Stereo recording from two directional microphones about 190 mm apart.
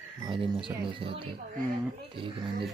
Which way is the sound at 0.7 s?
25° right (ahead or behind).